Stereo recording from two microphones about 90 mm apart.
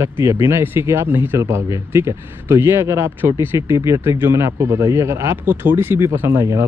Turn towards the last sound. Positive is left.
turn(degrees=-30)  # may be behind; listen again after turning